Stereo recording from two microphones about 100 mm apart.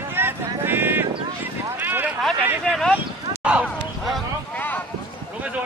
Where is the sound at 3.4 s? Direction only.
10° right (ahead or behind).